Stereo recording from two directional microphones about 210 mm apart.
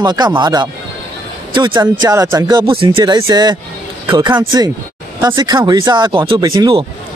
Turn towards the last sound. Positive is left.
turn(degrees=-20)  # may be behind; listen again after turning